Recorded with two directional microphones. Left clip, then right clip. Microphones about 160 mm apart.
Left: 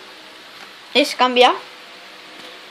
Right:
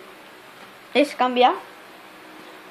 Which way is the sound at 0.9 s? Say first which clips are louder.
Left 3 dB; 5° left (ahead or behind).